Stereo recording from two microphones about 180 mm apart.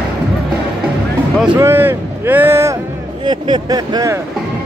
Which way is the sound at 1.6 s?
10° right (ahead or behind).